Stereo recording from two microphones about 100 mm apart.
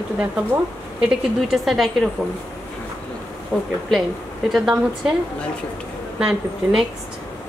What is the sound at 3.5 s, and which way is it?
Speech, 5° left (ahead or behind).